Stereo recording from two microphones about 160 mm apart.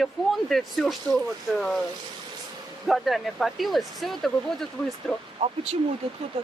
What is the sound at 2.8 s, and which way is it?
Speech, centre (ahead or behind).